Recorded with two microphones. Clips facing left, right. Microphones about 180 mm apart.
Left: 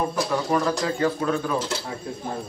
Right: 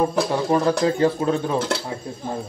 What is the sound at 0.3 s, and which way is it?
A man's voice, 30° right (ahead or behind).